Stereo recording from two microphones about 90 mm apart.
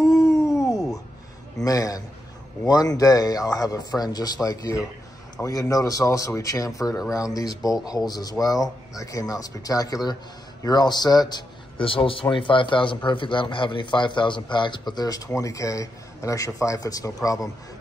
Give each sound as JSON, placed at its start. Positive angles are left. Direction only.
{"t": 0.0, "sound": "howl", "side_deg": 35}
{"t": 1.6, "sound": "a man's voice", "side_deg": 40}
{"t": 11.8, "sound": "a man's voice", "side_deg": 85}